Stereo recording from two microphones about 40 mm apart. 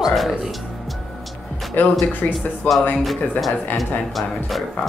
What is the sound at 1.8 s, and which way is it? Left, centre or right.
Speech, left.